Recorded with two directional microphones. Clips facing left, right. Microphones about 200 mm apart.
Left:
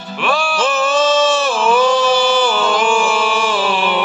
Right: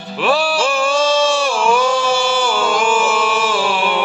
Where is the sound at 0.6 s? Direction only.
10° right (ahead or behind).